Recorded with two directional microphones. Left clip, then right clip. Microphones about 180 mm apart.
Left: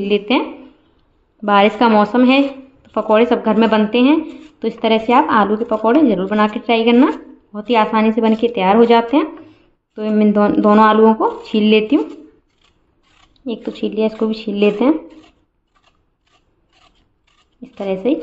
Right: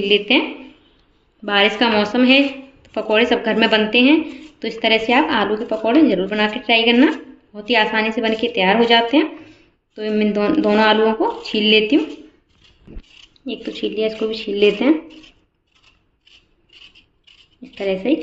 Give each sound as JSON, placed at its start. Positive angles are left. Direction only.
{"t": 0.0, "sound": "a woman's voice", "side_deg": 55}
{"t": 1.4, "sound": "a woman's voice", "side_deg": 60}
{"t": 13.3, "sound": "a woman's voice", "side_deg": 65}
{"t": 17.6, "sound": "a woman's voice", "side_deg": 60}